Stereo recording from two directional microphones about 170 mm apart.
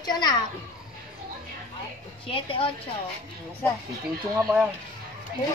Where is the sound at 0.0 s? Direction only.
25° left (ahead or behind).